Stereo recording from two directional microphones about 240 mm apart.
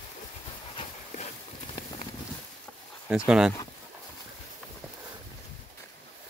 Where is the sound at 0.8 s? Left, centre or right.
Left.